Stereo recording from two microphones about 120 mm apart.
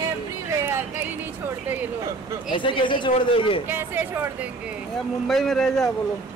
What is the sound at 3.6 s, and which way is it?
Speech, 15° right (ahead or behind).